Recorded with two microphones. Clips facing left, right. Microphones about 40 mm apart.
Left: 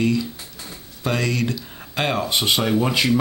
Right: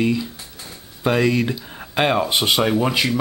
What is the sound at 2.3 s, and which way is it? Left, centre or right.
Speech, centre.